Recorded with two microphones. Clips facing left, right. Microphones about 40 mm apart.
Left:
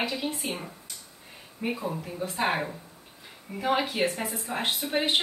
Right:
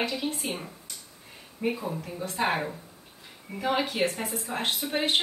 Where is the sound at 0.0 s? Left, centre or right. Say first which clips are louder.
Even; centre.